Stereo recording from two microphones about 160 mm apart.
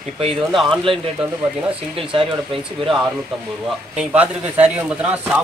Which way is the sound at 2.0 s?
35° right (ahead or behind).